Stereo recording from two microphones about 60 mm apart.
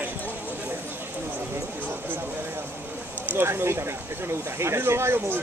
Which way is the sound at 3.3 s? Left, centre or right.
Right.